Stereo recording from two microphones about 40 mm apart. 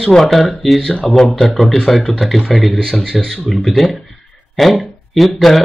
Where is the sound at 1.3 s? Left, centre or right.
Centre.